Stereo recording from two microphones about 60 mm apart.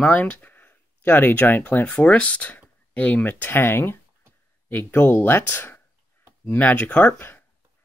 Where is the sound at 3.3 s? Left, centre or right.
Left.